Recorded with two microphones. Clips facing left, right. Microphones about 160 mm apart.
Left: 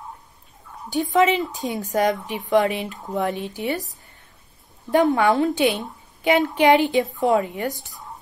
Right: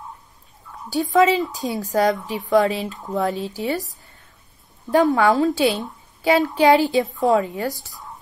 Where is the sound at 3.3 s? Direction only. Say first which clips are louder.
Right 1 dB; 35° right (ahead or behind).